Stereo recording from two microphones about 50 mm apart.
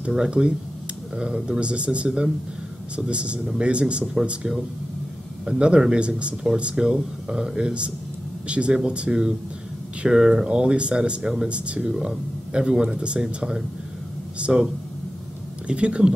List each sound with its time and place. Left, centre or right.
0.0 s speech: centre
11.9 s speech: centre
12.5 s speech: centre